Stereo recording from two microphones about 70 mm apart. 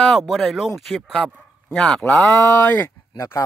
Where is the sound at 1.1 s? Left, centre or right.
Centre.